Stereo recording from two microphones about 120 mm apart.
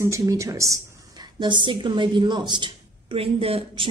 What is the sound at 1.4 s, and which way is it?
A woman's voice, 40° right (ahead or behind).